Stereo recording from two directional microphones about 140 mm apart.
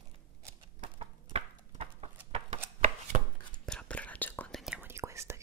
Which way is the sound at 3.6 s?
5° left (ahead or behind).